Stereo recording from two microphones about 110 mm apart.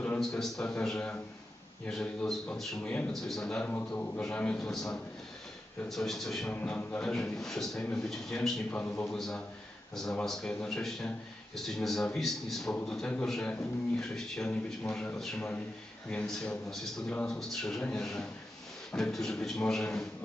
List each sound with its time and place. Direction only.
0.2 s a man's voice: 5° left (ahead or behind)
6.5 s a man's voice: 15° left (ahead or behind)
8.7 s a man's voice: 20° left (ahead or behind)
9.1 s a man's voice: 5° left (ahead or behind)